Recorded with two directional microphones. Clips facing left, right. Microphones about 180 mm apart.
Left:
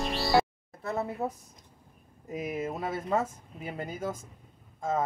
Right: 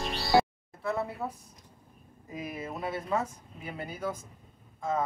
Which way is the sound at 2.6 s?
45° left (ahead or behind).